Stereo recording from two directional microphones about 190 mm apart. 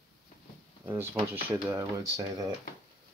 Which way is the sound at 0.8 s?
10° right (ahead or behind).